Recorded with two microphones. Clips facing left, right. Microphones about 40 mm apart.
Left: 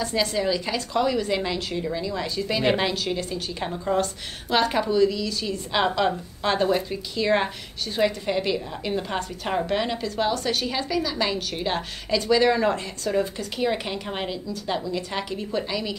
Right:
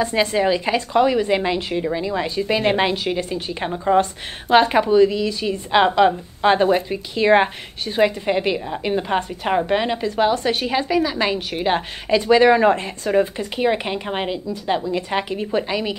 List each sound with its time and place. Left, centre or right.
0.0 s a woman's voice: right